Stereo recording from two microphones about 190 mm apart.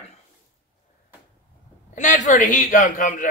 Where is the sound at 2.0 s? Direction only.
40° left (ahead or behind).